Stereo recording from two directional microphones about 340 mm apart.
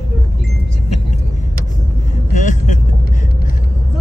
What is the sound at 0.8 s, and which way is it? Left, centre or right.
Vehicle, centre.